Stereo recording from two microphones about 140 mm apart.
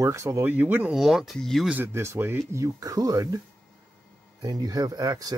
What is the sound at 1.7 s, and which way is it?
Speech, 15° right (ahead or behind).